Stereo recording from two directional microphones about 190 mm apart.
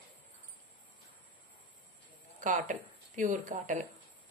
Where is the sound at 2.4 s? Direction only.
40° right (ahead or behind).